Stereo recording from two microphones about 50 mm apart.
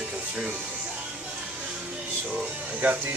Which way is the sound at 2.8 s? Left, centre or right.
Right.